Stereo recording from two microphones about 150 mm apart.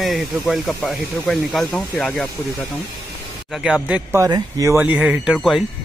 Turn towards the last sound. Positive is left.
turn(degrees=0)  # may be behind; listen again after turning